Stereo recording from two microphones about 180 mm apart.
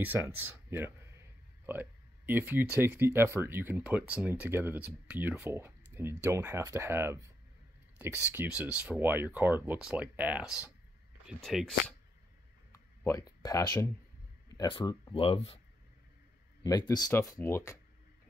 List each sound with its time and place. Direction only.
0.0 s speech: 10° right (ahead or behind)
12.7 s a man's voice: 20° left (ahead or behind)
16.6 s speech: 20° left (ahead or behind)